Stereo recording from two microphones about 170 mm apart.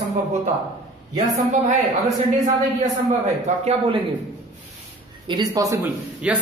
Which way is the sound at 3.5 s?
45° right (ahead or behind).